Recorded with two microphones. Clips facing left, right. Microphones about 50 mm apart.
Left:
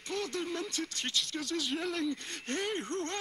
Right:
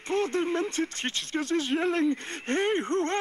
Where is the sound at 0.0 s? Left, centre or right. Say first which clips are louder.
Right 9 dB; right.